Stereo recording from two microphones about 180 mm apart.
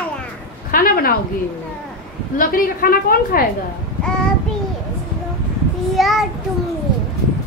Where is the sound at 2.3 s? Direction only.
50° left (ahead or behind).